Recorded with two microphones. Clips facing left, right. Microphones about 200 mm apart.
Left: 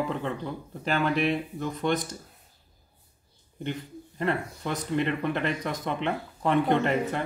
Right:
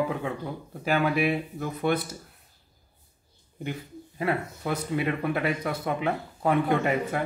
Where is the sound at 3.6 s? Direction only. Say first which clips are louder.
Left 1 dB; 5° right (ahead or behind).